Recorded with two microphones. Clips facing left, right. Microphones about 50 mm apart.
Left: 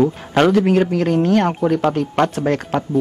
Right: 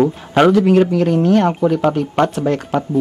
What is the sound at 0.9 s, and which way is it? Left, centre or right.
Speech, left.